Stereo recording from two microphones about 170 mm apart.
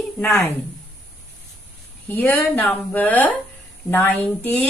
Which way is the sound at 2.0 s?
10° left (ahead or behind).